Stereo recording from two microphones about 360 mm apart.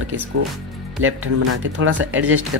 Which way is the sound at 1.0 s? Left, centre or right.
Right.